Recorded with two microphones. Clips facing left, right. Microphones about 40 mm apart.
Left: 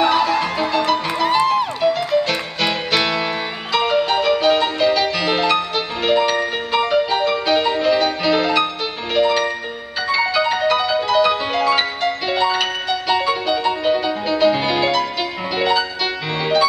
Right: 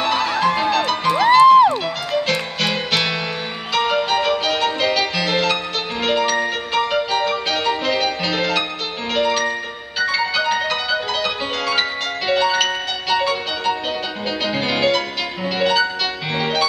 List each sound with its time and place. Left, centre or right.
0.6 s music: centre
1.2 s music: right
1.8 s music: centre